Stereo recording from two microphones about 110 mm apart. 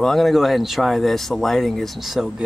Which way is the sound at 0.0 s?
Centre (ahead or behind).